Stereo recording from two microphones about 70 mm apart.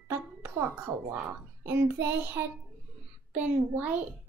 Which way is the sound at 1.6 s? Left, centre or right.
Right.